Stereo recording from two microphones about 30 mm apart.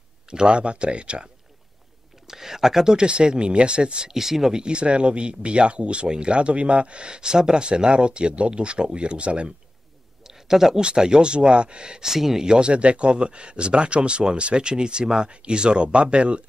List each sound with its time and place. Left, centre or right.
0.5 s speech: right
2.2 s a sound: centre
3.0 s speech: right
4.1 s speech: centre
4.6 s speech: right
10.2 s a sound: centre
11.0 s speech: right
12.0 s speech: centre
12.4 s speech: right